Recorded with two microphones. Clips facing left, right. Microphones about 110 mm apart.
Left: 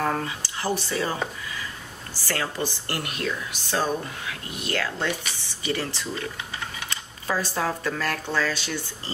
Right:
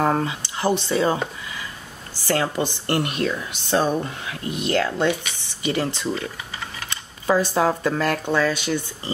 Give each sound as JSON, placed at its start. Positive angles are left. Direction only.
{"t": 0.0, "sound": "a woman's voice", "side_deg": -25}